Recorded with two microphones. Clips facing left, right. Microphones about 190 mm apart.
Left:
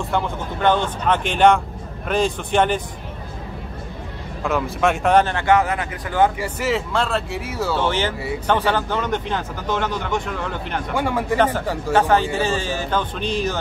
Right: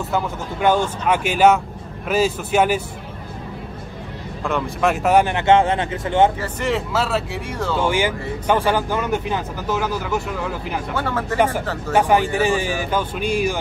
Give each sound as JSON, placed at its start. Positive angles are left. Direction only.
{"t": 0.1, "sound": "speech", "side_deg": -10}
{"t": 4.4, "sound": "speech", "side_deg": 0}
{"t": 6.4, "sound": "speech", "side_deg": 0}
{"t": 7.7, "sound": "speech", "side_deg": -10}
{"t": 11.0, "sound": "speech", "side_deg": 15}
{"t": 11.3, "sound": "speech", "side_deg": -10}